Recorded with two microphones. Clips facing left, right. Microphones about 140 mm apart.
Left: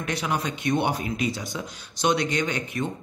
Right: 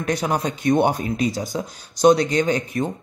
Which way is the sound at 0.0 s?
40° right (ahead or behind).